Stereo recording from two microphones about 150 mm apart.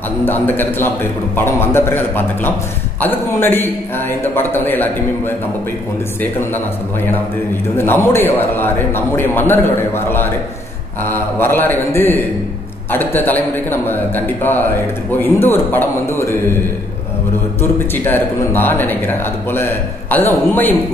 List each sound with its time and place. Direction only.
0.2 s a man's voice: 15° left (ahead or behind)
7.7 s a man's voice: 15° left (ahead or behind)
17.6 s a man's voice: 15° left (ahead or behind)